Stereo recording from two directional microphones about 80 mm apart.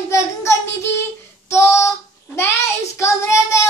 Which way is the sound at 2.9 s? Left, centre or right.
Left.